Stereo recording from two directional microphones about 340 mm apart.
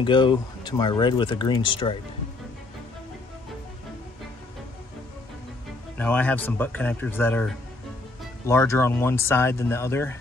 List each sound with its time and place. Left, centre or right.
0.0 s speech: centre
5.9 s a man's voice: centre